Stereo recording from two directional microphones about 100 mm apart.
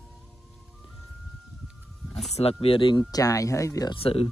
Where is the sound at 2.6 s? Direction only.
65° left (ahead or behind).